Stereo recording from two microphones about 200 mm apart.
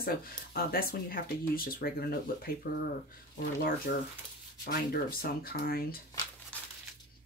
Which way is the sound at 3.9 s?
50° left (ahead or behind).